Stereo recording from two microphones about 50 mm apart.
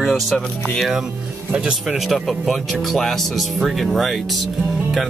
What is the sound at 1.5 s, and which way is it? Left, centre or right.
Speech, right.